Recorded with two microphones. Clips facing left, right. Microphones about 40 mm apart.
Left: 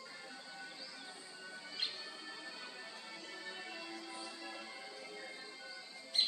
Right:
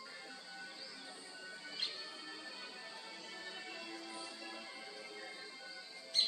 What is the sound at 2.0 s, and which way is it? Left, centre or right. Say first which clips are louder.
Music: left 1 dB; centre.